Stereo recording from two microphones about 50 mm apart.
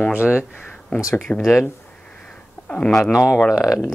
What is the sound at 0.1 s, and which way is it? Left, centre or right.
Speech, right.